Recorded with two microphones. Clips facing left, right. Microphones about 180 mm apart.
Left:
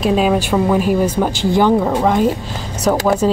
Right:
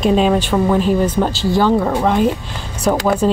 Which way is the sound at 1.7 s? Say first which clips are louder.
Left 1 dB; 5° left (ahead or behind).